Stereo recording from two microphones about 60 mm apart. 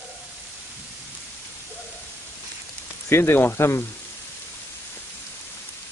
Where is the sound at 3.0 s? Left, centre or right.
Left.